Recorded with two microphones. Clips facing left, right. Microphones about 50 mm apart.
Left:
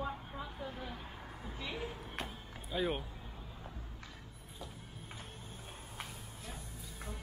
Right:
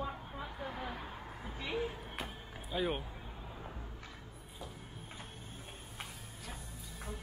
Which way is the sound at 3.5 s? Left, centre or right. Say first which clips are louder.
Right 3 dB; centre.